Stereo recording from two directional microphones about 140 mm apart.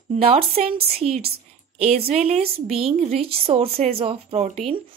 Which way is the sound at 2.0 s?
45° right (ahead or behind).